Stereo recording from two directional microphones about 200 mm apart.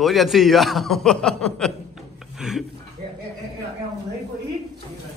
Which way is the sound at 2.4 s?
Centre (ahead or behind).